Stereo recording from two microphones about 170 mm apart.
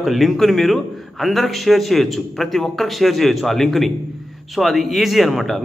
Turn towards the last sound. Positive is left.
turn(degrees=0)  # may be behind; listen again after turning